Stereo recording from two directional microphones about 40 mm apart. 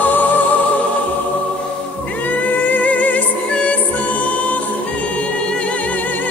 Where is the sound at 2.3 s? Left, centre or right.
Left.